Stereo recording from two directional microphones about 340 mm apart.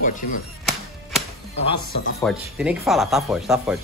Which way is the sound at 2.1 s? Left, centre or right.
Centre.